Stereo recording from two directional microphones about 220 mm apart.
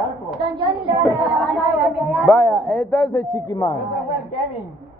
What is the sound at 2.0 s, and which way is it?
Speech, centre (ahead or behind).